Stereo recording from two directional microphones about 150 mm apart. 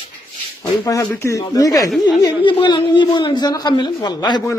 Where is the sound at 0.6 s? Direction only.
25° left (ahead or behind).